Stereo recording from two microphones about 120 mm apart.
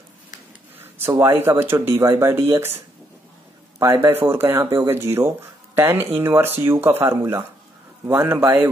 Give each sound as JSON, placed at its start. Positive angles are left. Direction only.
{"t": 0.7, "sound": "speech", "side_deg": -20}
{"t": 3.8, "sound": "a man's voice", "side_deg": -25}